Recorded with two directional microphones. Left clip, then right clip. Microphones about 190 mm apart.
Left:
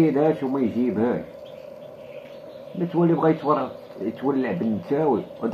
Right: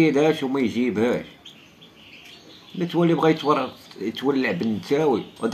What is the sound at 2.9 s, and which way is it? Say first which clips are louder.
Speech: right 1 dB; 20° right (ahead or behind).